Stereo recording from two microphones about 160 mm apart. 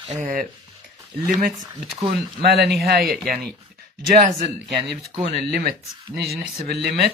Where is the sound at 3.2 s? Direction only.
65° right (ahead or behind).